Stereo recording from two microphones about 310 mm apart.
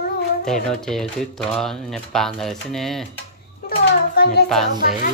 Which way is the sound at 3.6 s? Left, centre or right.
Left.